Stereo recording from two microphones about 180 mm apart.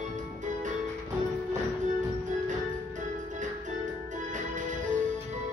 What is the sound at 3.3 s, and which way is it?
Music, 45° right (ahead or behind).